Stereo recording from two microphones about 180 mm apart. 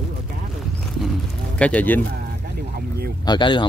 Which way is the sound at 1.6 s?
10° left (ahead or behind).